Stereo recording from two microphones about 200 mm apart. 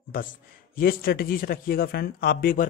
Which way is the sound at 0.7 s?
50° left (ahead or behind).